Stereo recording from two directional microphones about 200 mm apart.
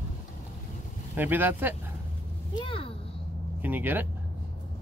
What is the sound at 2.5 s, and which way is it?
Speech, 25° left (ahead or behind).